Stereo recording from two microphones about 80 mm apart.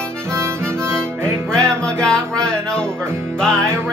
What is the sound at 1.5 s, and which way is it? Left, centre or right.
Music, centre.